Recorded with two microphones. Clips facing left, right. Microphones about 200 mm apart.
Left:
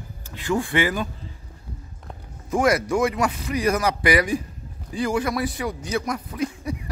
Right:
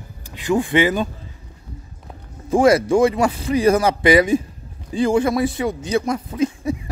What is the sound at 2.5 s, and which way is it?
A man's voice, 30° right (ahead or behind).